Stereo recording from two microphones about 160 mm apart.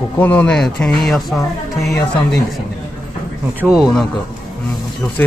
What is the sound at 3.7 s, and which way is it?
Speech, 5° right (ahead or behind).